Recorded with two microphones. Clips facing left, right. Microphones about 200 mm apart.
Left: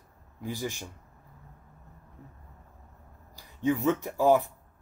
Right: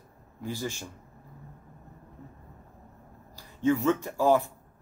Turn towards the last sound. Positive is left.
turn(degrees=15)  # may be behind; listen again after turning